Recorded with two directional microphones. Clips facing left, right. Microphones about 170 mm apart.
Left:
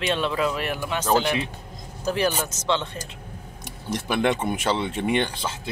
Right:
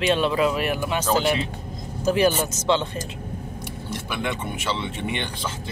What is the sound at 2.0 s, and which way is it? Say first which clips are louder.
Speech: right 4 dB; 10° right (ahead or behind).